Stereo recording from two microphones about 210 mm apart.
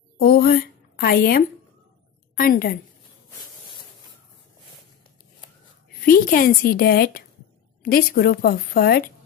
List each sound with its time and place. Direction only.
0.2 s a woman's voice: 45° left (ahead or behind)
6.0 s a woman's voice: 40° left (ahead or behind)